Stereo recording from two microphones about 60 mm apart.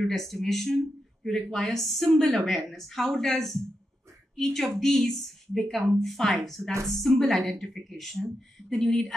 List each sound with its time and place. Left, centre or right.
0.0 s a woman's voice: centre